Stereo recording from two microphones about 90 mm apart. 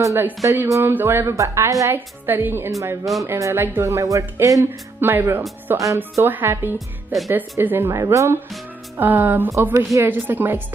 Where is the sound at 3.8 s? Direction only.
35° right (ahead or behind).